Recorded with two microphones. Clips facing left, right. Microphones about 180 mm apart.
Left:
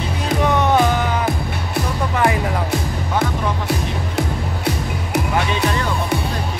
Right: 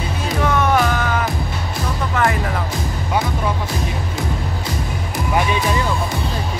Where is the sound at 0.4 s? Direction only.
20° left (ahead or behind).